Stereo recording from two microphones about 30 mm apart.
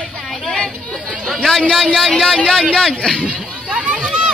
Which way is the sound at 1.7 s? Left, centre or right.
Left.